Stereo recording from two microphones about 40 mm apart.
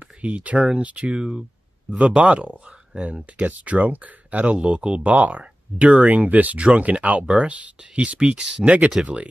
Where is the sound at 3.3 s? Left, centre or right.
Right.